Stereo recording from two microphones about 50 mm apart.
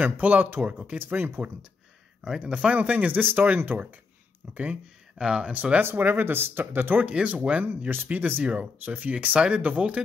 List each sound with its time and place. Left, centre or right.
0.0 s speech: right
0.5 s speech: right
4.6 s speech: right
5.5 s speech: right
5.9 s speech: right
7.1 s speech: right